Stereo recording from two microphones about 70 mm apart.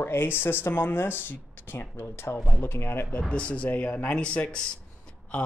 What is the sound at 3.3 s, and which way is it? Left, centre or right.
Speech, centre.